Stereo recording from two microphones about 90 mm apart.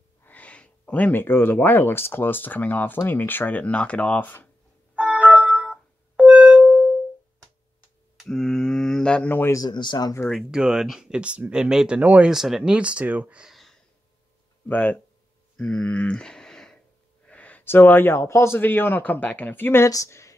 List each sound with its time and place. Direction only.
0.2 s speech: 15° left (ahead or behind)
4.9 s music: 15° right (ahead or behind)
8.2 s mantra: 5° left (ahead or behind)
9.7 s speech: 55° left (ahead or behind)
10.5 s speech: 10° right (ahead or behind)
12.3 s speech: 5° right (ahead or behind)
13.5 s a sound: centre (ahead or behind)
14.7 s speech: 15° left (ahead or behind)
15.5 s a sound: 10° left (ahead or behind)
17.3 s speech: 15° left (ahead or behind)
19.9 s speech: 35° left (ahead or behind)